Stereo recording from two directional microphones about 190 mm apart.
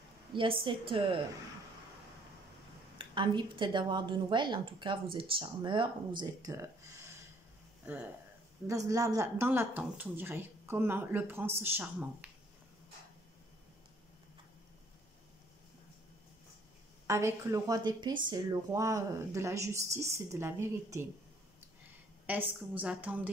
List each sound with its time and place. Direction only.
0.3 s speech: 25° right (ahead or behind)
3.0 s a woman's voice: 25° right (ahead or behind); by 12.3 s 10° right (ahead or behind)
17.1 s a woman's voice: 15° right (ahead or behind)
22.2 s a woman's voice: 10° right (ahead or behind)